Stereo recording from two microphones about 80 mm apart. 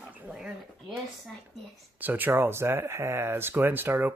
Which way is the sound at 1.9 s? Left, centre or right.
Right.